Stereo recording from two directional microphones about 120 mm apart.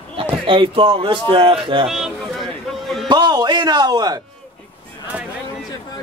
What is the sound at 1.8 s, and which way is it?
Speech, centre (ahead or behind).